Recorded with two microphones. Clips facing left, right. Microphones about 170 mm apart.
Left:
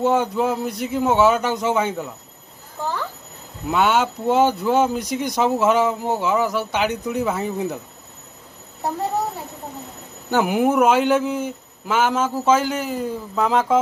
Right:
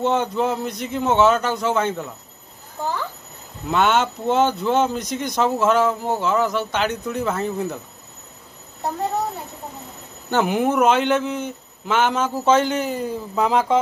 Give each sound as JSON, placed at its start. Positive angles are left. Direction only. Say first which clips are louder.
{"t": 0.0, "sound": "speech", "louder": "left 1 dB", "side_deg": 10}
{"t": 3.7, "sound": "speech", "louder": "even", "side_deg": 10}
{"t": 10.3, "sound": "a man's voice", "louder": "left 1 dB", "side_deg": 10}